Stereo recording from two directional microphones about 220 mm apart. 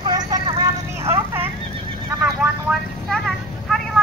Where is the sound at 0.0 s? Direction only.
20° right (ahead or behind).